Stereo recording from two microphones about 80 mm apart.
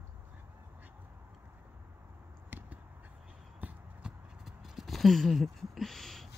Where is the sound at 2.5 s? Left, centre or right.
Right.